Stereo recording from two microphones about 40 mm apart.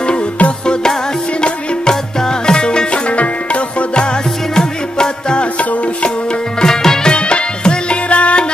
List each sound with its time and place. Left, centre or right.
0.0 s music: left
3.1 s music: left
4.6 s music: centre
5.4 s music: left
6.6 s music: centre
7.1 s music: left